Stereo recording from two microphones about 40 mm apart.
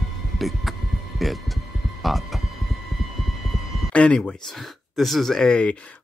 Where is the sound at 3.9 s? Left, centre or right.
Left.